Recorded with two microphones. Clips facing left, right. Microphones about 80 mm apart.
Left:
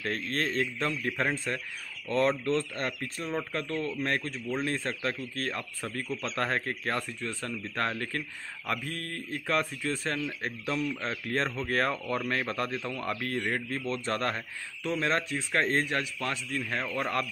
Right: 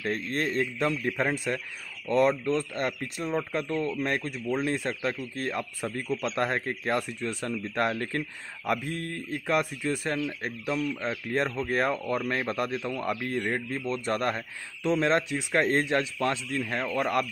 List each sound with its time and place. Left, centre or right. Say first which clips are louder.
0.0 s speech: right 2 dB; centre
16.9 s speech: right 5 dB; centre